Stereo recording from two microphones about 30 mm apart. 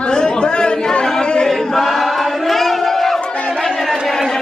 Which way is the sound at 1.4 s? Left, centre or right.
Centre.